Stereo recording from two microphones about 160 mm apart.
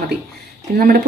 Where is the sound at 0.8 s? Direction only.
70° right (ahead or behind).